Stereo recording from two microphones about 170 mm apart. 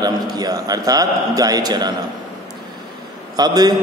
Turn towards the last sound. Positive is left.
turn(degrees=-25)  # may be behind; listen again after turning